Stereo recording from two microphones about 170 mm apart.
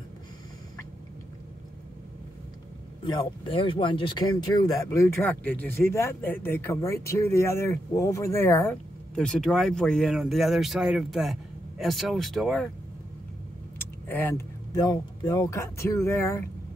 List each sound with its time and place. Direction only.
3.1 s speech: 25° left (ahead or behind)
9.1 s speech: 5° left (ahead or behind)
14.0 s speech: 15° left (ahead or behind)